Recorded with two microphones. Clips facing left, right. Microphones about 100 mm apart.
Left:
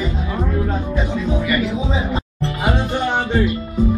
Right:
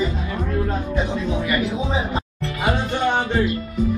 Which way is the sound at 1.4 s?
15° right (ahead or behind).